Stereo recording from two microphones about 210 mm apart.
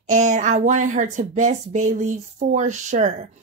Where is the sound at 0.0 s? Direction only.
35° right (ahead or behind).